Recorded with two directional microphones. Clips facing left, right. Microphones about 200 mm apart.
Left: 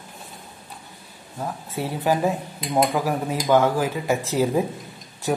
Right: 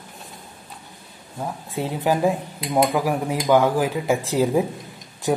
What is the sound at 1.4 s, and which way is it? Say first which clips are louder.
Speech: right 1 dB; 15° right (ahead or behind).